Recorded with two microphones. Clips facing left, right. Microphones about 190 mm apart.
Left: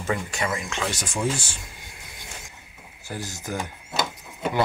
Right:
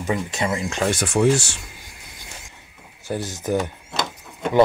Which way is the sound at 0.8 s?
60° right (ahead or behind).